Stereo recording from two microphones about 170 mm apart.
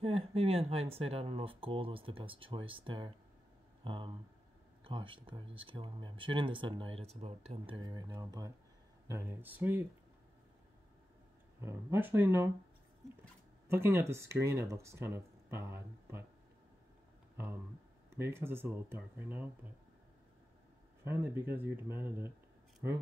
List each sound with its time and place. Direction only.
0.0 s speech: 35° right (ahead or behind); by 9.8 s 10° right (ahead or behind)
11.6 s speech: 15° right (ahead or behind)
13.7 s speech: 15° right (ahead or behind)
18.1 s speech: 15° right (ahead or behind)
21.0 s speech: 15° right (ahead or behind)